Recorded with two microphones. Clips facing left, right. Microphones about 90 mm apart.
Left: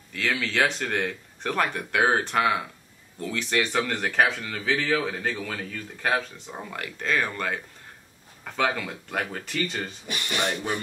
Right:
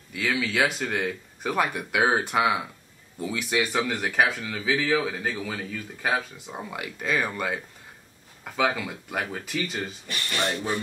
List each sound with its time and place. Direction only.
0.1 s speech: 10° right (ahead or behind)
10.0 s speech: 15° left (ahead or behind)